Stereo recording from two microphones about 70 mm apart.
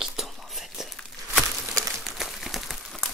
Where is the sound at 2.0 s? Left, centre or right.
Centre.